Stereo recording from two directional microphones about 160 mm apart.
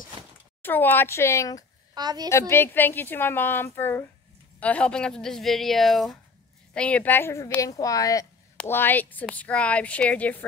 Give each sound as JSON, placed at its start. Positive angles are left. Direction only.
{"t": 0.6, "sound": "speech", "side_deg": 10}
{"t": 2.0, "sound": "a woman's voice", "side_deg": -25}
{"t": 2.2, "sound": "speech", "side_deg": 15}